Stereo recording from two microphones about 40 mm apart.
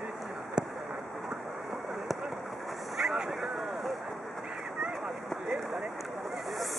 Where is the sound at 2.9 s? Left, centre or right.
Centre.